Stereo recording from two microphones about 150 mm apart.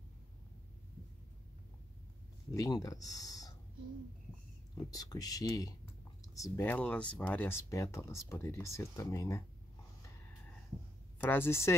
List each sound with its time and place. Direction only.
2.5 s speech: 25° left (ahead or behind)
4.9 s speech: 25° left (ahead or behind)
11.1 s speech: 15° left (ahead or behind)